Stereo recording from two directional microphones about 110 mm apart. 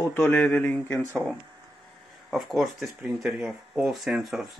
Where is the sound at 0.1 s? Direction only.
20° left (ahead or behind).